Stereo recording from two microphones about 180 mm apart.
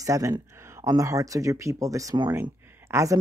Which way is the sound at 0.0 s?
15° right (ahead or behind).